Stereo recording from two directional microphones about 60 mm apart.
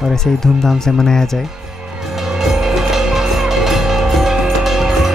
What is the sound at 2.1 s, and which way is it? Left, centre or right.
Music, centre.